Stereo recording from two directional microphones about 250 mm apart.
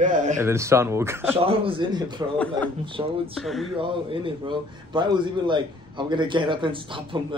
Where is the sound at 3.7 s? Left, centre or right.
Right.